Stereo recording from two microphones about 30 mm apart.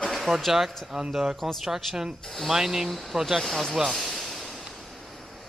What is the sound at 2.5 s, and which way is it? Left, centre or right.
Speech, centre.